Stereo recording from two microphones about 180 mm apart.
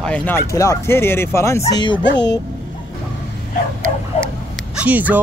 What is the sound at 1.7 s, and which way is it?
Speech, 25° left (ahead or behind).